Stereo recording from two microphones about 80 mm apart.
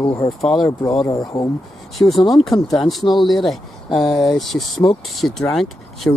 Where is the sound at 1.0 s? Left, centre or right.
Left.